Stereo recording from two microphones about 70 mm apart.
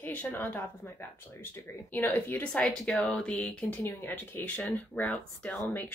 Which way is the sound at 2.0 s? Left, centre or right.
Left.